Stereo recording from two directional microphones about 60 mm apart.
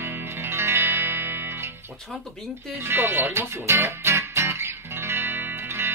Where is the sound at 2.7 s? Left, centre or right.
Right.